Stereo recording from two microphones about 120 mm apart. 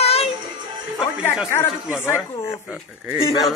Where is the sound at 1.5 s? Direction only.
20° left (ahead or behind).